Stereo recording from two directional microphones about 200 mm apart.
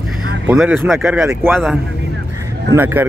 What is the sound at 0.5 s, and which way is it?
Speech, 5° right (ahead or behind).